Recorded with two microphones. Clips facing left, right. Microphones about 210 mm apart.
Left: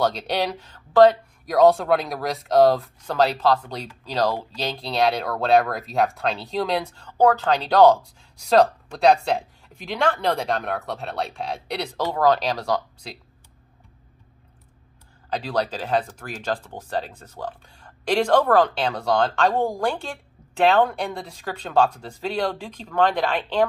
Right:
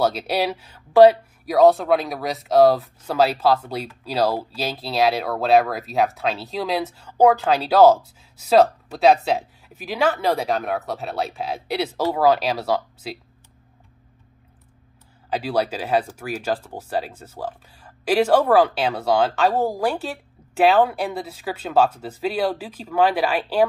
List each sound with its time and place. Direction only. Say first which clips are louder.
0.0 s speech: right 2 dB; 5° right (ahead or behind)
15.2 s speech: right 2 dB; 5° right (ahead or behind)